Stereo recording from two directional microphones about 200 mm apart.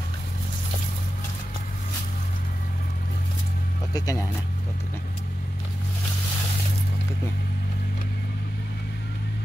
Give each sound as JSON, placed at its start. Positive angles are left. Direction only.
{"t": 3.9, "sound": "speech", "side_deg": 15}